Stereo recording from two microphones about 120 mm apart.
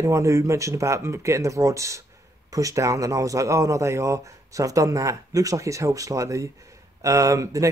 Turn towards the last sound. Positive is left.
turn(degrees=-25)  # may be behind; listen again after turning